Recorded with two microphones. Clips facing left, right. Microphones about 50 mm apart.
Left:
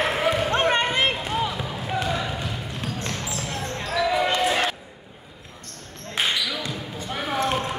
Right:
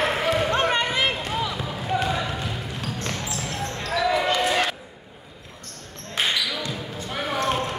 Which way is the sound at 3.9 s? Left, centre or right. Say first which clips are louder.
Even; centre.